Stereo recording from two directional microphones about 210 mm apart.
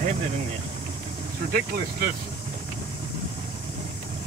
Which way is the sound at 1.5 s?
50° right (ahead or behind).